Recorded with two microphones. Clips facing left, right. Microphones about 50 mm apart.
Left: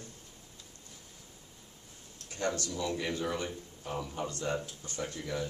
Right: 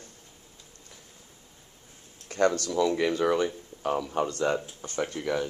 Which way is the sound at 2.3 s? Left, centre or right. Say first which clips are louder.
Right 9 dB; right.